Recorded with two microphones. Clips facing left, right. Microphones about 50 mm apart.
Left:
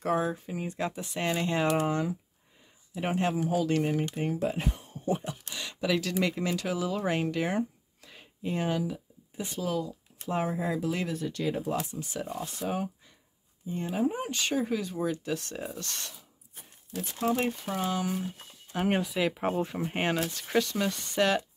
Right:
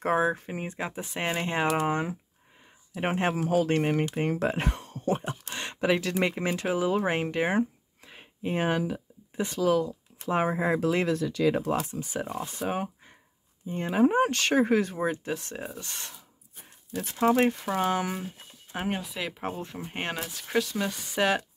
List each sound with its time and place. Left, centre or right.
0.0 s speech: right
0.7 s speech: right
5.1 s speech: right
8.0 s a sound: right
8.4 s speech: right
11.1 s speech: right
11.9 s speech: right
12.6 s speech: right
13.9 s speech: right
15.0 s speech: right
15.7 s speech: centre
16.9 s speech: right
18.7 s speech: right
19.0 s speech: centre